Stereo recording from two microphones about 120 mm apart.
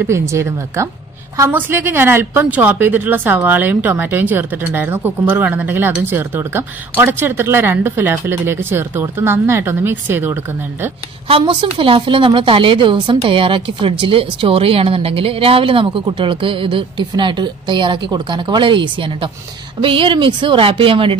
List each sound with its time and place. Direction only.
0.0 s a woman's voice: 25° right (ahead or behind)
11.2 s a woman's voice: 50° right (ahead or behind)